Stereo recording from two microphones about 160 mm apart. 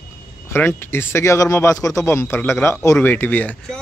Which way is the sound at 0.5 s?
15° left (ahead or behind).